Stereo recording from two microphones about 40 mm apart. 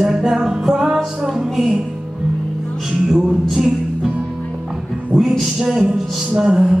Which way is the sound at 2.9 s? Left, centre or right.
Right.